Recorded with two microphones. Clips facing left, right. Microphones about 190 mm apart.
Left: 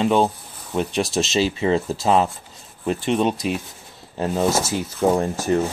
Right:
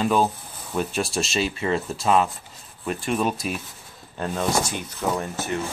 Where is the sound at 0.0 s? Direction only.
25° left (ahead or behind).